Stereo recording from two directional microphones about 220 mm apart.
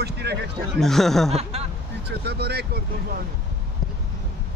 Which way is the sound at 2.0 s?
50° right (ahead or behind).